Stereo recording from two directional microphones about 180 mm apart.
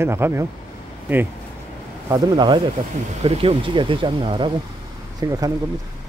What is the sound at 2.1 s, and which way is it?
Speech, 20° right (ahead or behind).